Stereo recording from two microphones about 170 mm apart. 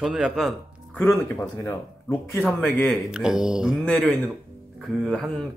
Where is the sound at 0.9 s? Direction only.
15° left (ahead or behind).